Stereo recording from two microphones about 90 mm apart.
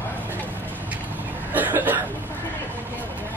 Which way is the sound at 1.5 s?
20° right (ahead or behind).